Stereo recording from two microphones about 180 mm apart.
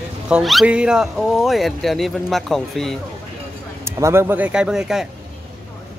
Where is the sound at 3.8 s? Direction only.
15° right (ahead or behind).